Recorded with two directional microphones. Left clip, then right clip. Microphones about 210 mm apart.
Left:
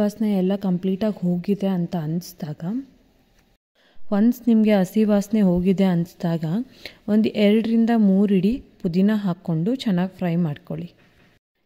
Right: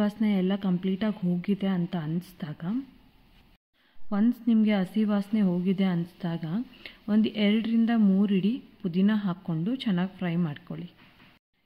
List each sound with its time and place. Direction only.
0.0 s a woman's voice: 25° left (ahead or behind)
4.1 s a woman's voice: 40° left (ahead or behind)